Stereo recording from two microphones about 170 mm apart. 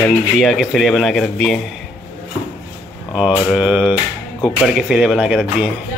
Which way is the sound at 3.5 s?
5° right (ahead or behind).